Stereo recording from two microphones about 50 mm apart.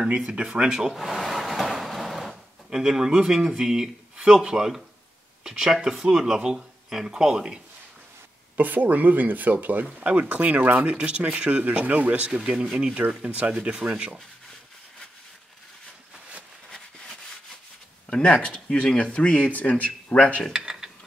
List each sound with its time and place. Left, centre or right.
0.0 s speech: right
0.5 s drawer open or close: centre
4.2 s speech: centre
8.5 s speech: right
10.9 s speech: right
12.3 s speech: centre
16.7 s rub: centre
18.1 s speech: left
19.5 s speech: left
20.5 s dishes: centre